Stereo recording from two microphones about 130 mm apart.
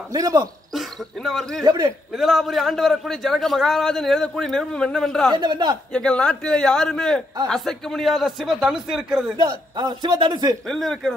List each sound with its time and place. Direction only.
0.1 s speech: 25° right (ahead or behind)
0.7 s a man's voice: centre (ahead or behind)
1.6 s speech: 30° right (ahead or behind)
2.1 s a man's voice: centre (ahead or behind)
5.3 s a man's voice: 35° right (ahead or behind)
5.9 s a man's voice: 5° left (ahead or behind)
9.4 s a man's voice: 35° right (ahead or behind)
10.7 s a man's voice: centre (ahead or behind)